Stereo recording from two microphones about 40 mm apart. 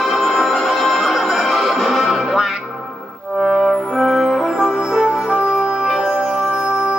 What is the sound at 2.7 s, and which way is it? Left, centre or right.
Music, centre.